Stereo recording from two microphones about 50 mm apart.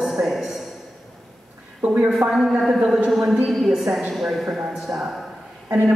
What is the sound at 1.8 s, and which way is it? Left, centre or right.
Speech, right.